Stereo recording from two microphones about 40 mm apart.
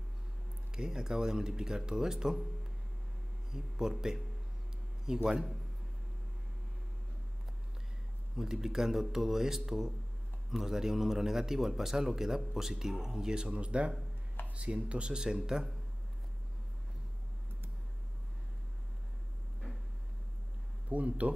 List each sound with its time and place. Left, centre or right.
0.7 s speech: centre
8.4 s speech: centre
20.9 s speech: right